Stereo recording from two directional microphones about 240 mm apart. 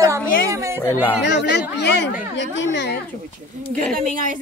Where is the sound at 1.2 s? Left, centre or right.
Left.